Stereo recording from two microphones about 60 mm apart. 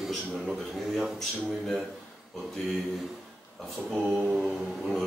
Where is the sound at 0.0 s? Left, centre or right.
Centre.